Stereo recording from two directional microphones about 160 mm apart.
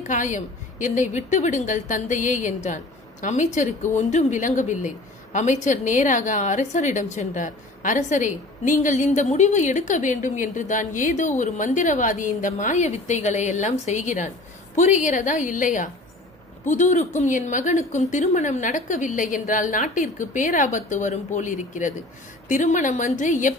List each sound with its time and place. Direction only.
0.0 s a woman's voice: 50° left (ahead or behind)